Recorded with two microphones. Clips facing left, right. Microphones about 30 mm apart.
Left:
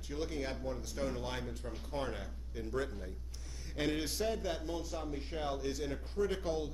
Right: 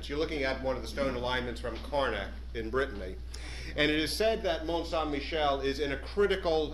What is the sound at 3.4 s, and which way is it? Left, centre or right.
Speech, right.